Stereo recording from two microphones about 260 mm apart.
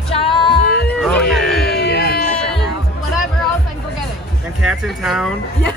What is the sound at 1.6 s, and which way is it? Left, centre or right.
Music, left.